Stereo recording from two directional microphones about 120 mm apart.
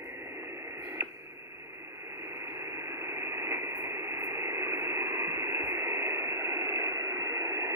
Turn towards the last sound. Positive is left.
turn(degrees=-25)  # may be behind; listen again after turning